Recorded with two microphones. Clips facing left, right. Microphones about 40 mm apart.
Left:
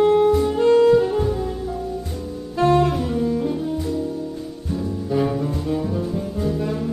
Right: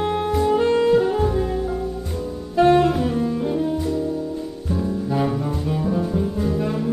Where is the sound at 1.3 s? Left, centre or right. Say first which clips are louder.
Right 3 dB; right.